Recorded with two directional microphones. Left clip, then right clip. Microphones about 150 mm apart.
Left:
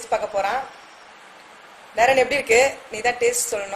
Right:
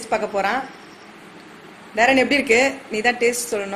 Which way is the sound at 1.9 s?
10° left (ahead or behind).